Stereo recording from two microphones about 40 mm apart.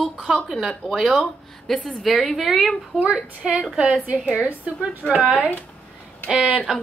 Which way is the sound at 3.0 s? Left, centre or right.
Right.